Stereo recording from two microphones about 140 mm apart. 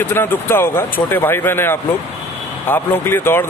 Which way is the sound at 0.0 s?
15° left (ahead or behind).